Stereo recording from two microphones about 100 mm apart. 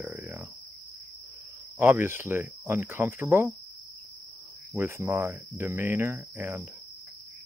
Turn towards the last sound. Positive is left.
turn(degrees=-25)  # may be behind; listen again after turning